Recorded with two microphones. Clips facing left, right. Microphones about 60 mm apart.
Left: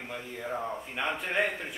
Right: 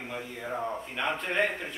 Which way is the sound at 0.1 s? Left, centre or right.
Centre.